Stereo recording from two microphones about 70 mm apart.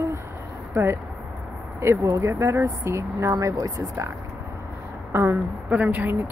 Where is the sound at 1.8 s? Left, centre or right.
Right.